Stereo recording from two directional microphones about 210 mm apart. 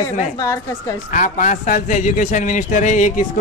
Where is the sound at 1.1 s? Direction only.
35° left (ahead or behind).